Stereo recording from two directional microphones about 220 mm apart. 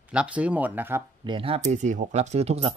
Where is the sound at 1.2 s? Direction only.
25° right (ahead or behind).